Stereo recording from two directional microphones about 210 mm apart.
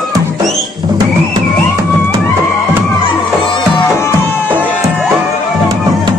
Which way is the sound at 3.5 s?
25° left (ahead or behind).